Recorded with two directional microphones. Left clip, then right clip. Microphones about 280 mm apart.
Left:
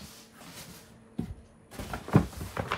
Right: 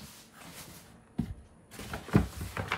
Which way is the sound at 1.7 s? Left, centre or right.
Centre.